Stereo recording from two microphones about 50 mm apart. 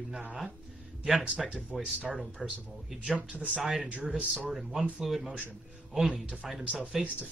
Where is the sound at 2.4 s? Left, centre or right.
Centre.